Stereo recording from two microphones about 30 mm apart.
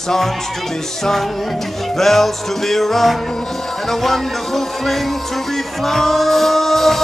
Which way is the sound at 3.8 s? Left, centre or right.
Centre.